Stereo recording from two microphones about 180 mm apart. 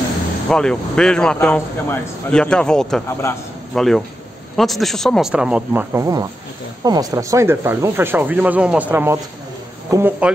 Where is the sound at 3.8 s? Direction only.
Centre (ahead or behind).